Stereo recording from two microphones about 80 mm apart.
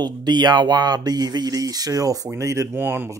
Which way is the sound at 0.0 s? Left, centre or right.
Right.